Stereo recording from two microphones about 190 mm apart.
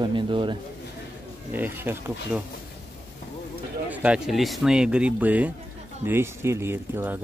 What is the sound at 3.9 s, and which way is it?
Speech, 5° right (ahead or behind).